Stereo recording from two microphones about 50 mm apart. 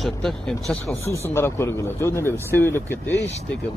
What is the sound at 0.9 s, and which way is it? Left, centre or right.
A man's voice, left.